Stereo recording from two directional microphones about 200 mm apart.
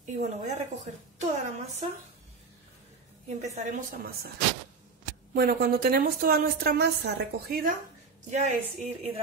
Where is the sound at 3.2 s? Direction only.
40° right (ahead or behind).